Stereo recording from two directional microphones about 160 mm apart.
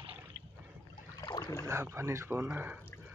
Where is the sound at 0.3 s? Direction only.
90° right.